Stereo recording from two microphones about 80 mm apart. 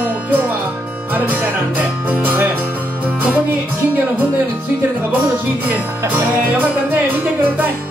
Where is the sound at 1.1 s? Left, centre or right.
Right.